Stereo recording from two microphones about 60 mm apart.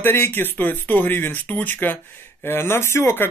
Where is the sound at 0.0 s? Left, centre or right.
Left.